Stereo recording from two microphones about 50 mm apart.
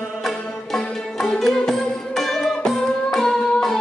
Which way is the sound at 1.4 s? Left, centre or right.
Centre.